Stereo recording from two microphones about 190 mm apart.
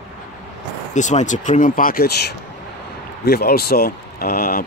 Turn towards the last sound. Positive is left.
turn(degrees=50)  # may be behind; listen again after turning